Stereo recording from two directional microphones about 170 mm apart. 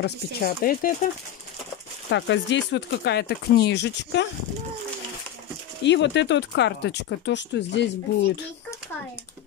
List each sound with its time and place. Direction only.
0.0 s speech: 65° left (ahead or behind)
2.0 s speech: 90° left
5.9 s speech: 90° left